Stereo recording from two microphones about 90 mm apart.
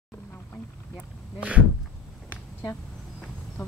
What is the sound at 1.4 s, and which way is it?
Speech, 15° right (ahead or behind).